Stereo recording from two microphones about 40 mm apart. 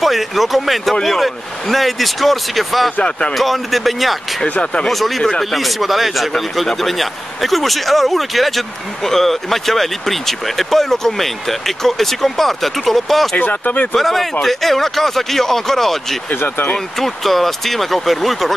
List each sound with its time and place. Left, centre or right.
0.0 s speech: centre
3.0 s speech: left
3.3 s speech: centre
13.4 s speech: left
13.9 s speech: centre
16.4 s speech: left
17.0 s speech: centre